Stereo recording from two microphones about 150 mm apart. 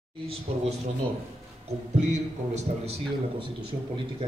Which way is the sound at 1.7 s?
50° right (ahead or behind).